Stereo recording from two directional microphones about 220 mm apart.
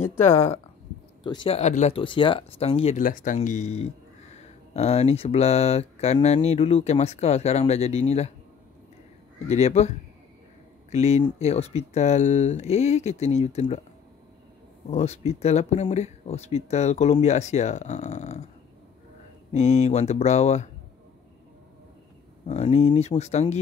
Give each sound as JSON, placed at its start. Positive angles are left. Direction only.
{"t": 0.3, "sound": "speech", "side_deg": 25}
{"t": 9.5, "sound": "speech", "side_deg": 30}
{"t": 14.9, "sound": "speech", "side_deg": 30}
{"t": 19.5, "sound": "speech", "side_deg": 30}
{"t": 22.5, "sound": "speech", "side_deg": 30}